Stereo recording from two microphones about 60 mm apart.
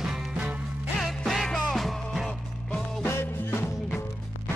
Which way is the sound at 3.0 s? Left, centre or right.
Left.